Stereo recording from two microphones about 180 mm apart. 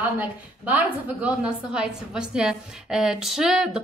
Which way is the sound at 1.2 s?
5° right (ahead or behind).